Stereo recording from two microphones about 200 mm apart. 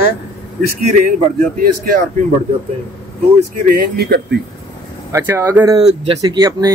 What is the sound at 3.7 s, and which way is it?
Speech, 50° right (ahead or behind).